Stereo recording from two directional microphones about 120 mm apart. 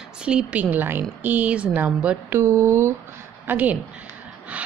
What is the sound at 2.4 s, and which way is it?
A woman's voice, 25° right (ahead or behind).